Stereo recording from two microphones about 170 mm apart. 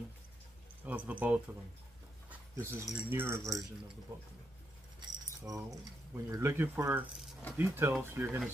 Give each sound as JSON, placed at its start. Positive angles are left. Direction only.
{"t": 0.8, "sound": "speech", "side_deg": -10}
{"t": 2.2, "sound": "a sound", "side_deg": -15}
{"t": 2.9, "sound": "speech", "side_deg": -10}
{"t": 5.4, "sound": "speech", "side_deg": -20}